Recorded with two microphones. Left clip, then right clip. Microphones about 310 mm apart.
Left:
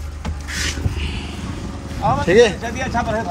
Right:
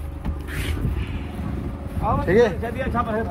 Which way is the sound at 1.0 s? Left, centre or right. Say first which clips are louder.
Left 6 dB; centre.